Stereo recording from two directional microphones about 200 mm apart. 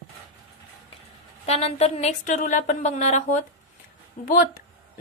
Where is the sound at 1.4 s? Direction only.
30° left (ahead or behind).